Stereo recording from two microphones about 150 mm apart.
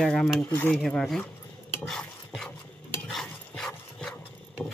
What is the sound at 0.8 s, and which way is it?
Cutlery, 5° left (ahead or behind).